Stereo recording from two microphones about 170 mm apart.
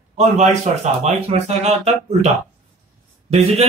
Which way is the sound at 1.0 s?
40° right (ahead or behind).